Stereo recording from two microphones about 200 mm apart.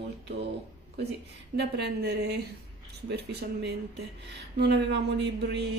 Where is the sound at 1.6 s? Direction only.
55° right (ahead or behind).